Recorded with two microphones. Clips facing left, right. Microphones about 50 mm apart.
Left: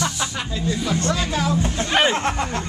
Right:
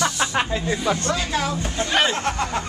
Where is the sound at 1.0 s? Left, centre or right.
Centre.